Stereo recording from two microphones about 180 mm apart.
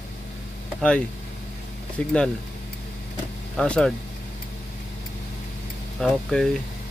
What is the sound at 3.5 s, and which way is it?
Speech, 5° left (ahead or behind).